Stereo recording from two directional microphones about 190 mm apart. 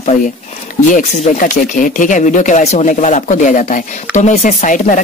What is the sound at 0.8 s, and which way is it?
Speech, 40° left (ahead or behind).